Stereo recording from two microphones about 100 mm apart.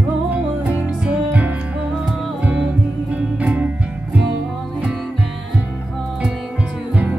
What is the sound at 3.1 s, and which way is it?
Music, 15° right (ahead or behind).